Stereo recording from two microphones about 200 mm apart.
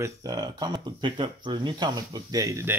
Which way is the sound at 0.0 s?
15° right (ahead or behind).